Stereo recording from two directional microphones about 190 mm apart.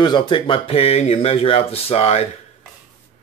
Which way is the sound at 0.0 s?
25° left (ahead or behind).